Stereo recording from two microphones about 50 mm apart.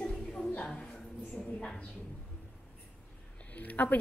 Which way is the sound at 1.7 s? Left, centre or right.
Left.